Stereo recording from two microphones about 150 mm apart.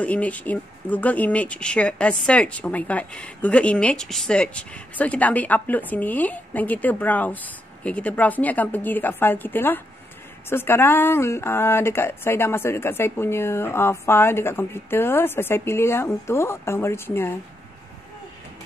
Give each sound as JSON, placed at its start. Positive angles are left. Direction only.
{"t": 0.0, "sound": "speech", "side_deg": 10}